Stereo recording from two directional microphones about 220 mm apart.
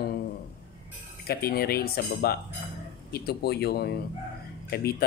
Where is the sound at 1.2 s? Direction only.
45° left (ahead or behind).